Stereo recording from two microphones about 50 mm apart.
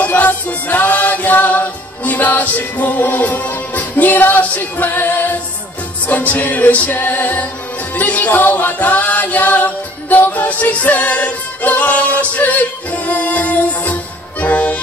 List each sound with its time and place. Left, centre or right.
0.0 s music: left